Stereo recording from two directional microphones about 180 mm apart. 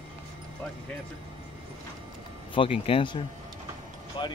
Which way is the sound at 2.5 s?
30° left (ahead or behind).